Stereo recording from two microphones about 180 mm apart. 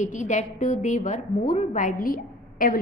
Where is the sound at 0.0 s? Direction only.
45° left (ahead or behind).